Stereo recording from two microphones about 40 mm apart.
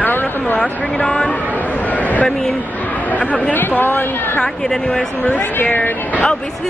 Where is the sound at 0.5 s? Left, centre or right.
Left.